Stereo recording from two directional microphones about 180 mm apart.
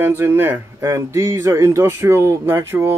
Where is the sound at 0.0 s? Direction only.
15° right (ahead or behind).